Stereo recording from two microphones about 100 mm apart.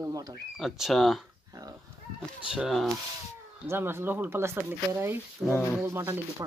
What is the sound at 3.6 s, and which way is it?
Speech, 25° right (ahead or behind).